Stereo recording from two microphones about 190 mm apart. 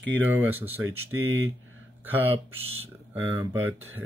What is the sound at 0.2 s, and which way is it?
Speech, 10° right (ahead or behind).